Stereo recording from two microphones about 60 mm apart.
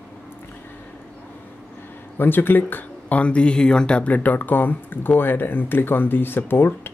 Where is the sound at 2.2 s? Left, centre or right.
Left.